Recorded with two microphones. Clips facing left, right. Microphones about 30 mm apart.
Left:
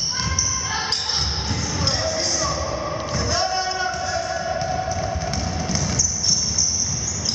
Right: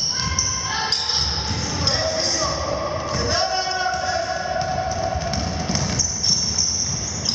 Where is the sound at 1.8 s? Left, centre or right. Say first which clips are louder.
Right 2 dB; centre.